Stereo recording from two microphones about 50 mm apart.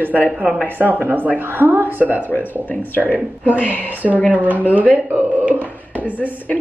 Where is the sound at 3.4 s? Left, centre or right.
Left.